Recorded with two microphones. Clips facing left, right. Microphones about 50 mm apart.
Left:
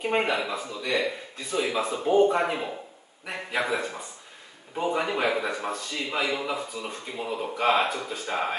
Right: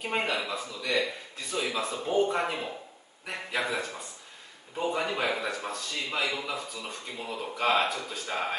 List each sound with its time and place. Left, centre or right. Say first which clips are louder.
0.0 s a man's voice: left 4 dB; centre
0.7 s a man's voice: left 2 dB; centre